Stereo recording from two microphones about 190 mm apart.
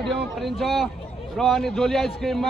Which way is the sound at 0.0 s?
Centre (ahead or behind).